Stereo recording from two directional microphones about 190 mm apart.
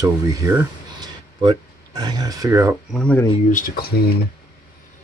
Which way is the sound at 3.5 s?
45° left (ahead or behind).